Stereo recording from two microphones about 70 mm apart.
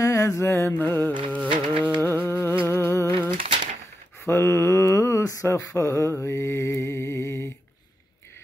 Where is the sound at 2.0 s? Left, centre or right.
Left.